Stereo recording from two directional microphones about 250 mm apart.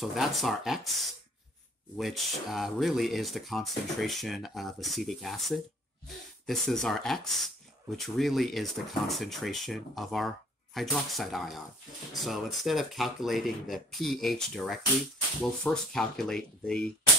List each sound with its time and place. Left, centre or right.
0.0 s speech: centre